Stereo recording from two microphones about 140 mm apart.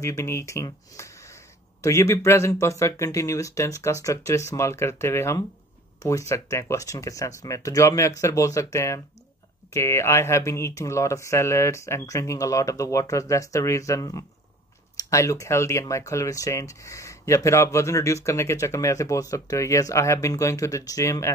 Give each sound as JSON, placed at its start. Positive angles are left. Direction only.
{"t": 0.0, "sound": "speech", "side_deg": 20}